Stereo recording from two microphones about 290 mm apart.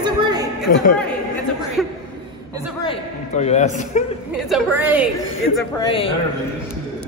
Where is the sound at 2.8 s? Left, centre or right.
Centre.